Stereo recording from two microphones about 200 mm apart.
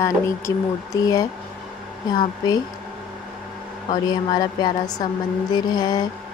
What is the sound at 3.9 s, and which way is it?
Speech, 20° left (ahead or behind).